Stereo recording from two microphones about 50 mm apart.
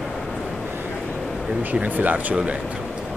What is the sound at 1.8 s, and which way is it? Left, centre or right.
Speech, right.